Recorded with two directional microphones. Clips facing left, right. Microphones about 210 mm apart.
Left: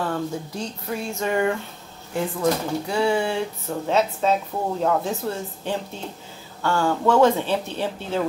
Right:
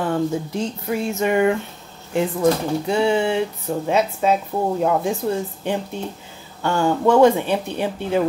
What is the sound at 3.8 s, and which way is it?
Speech, 10° right (ahead or behind).